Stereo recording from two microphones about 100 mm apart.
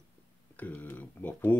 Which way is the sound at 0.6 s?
15° left (ahead or behind).